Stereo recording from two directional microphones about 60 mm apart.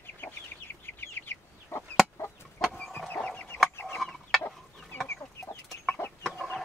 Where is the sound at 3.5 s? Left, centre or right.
Left.